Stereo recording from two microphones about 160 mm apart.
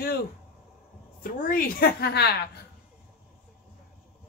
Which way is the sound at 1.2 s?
60° left (ahead or behind).